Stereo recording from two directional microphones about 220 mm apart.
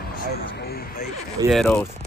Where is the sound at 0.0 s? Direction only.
45° left (ahead or behind).